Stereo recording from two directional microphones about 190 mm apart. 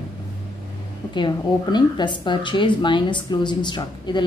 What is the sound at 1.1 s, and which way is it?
A woman's voice, 25° left (ahead or behind).